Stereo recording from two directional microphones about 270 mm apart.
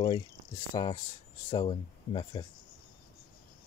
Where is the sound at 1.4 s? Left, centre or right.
Centre.